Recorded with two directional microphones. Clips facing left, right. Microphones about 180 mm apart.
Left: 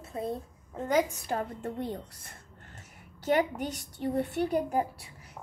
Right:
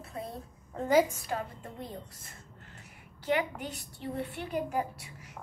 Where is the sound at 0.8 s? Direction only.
5° right (ahead or behind).